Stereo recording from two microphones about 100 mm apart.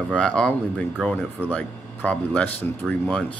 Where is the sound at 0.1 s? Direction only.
10° left (ahead or behind).